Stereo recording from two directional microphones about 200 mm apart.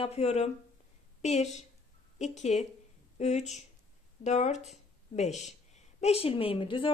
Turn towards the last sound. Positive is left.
turn(degrees=25)  # may be behind; listen again after turning